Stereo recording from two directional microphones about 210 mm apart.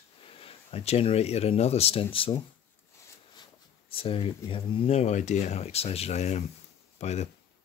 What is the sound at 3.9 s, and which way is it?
Speech, 25° left (ahead or behind).